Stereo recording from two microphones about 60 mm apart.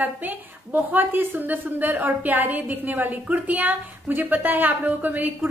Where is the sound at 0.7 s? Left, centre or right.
Right.